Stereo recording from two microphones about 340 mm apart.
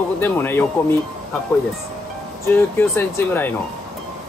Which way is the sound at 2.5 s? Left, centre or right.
Centre.